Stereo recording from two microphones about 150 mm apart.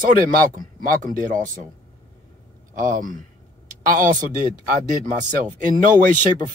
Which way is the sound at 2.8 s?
65° right (ahead or behind).